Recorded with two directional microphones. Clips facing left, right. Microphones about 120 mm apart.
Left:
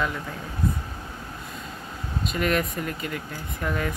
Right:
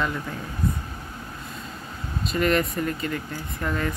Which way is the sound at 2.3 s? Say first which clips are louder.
Right 3 dB; 5° left (ahead or behind).